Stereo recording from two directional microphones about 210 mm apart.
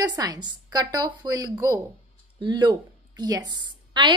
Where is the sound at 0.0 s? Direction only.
20° right (ahead or behind).